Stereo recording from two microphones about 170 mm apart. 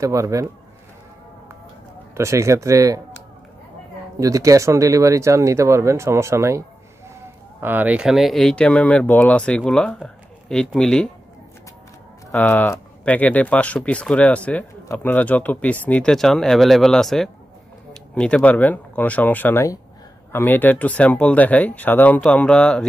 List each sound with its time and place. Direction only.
0.0 s a man's voice: 20° right (ahead or behind)
2.1 s speech: 15° right (ahead or behind)
4.2 s speech: 20° right (ahead or behind)
7.6 s speech: 10° right (ahead or behind)
12.3 s speech: 10° left (ahead or behind)